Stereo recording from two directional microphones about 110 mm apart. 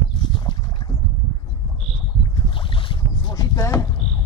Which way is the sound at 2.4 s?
50° left (ahead or behind).